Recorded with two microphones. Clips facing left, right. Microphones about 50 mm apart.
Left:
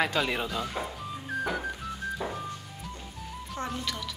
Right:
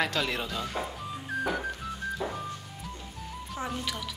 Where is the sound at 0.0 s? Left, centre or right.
Centre.